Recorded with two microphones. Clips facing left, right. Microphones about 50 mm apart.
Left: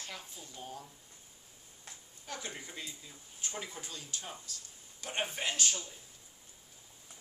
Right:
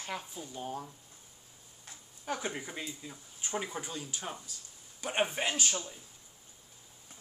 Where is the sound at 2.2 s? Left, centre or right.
Right.